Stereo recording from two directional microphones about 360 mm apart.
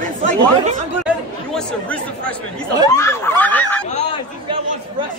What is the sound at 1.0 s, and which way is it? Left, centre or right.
Chatter, centre.